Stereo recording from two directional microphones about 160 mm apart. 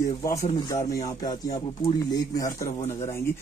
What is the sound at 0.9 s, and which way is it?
Speech, 25° left (ahead or behind).